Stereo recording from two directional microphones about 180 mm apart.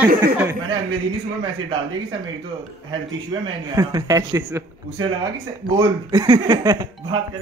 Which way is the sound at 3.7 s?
20° right (ahead or behind).